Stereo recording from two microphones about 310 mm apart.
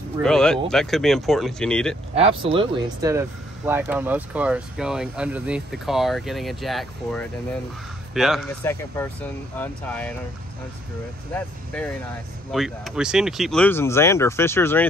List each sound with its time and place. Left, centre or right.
0.2 s speech: centre
2.1 s speech: centre
11.3 s speech: centre